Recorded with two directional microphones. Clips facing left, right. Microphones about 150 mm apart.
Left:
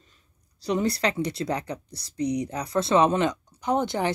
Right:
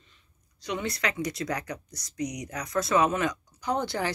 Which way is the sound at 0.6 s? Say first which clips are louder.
Left 7 dB; 35° left (ahead or behind).